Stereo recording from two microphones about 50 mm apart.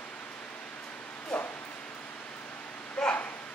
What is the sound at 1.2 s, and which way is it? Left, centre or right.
Bow-wow, left.